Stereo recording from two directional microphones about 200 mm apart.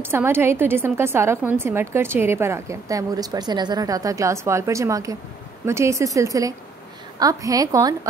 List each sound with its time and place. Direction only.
0.0 s a woman's voice: 10° right (ahead or behind)